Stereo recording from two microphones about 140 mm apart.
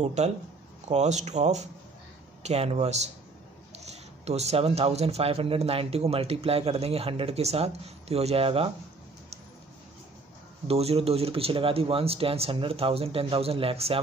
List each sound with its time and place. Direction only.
0.0 s speech: 55° right (ahead or behind)
10.7 s speech: 45° right (ahead or behind)